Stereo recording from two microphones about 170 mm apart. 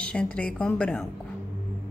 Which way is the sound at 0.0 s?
5° left (ahead or behind).